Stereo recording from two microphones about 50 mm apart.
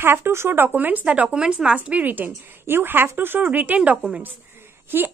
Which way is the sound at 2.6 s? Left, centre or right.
Right.